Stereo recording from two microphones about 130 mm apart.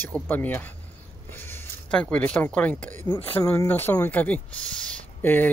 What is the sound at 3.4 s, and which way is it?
Speech, 25° left (ahead or behind).